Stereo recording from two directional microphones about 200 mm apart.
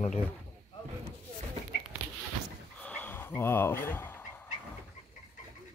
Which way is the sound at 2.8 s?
10° left (ahead or behind).